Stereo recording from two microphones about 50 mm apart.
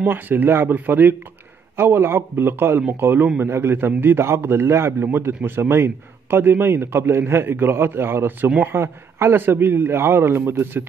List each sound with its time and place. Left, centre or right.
0.0 s a man's voice: right
1.8 s a man's voice: right